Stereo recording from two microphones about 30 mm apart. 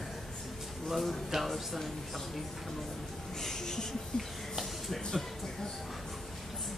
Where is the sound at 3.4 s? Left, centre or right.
Centre.